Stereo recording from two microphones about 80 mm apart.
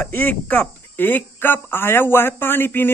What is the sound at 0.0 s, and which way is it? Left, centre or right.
A man's voice, left.